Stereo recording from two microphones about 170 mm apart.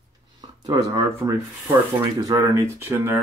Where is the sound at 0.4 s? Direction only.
20° right (ahead or behind).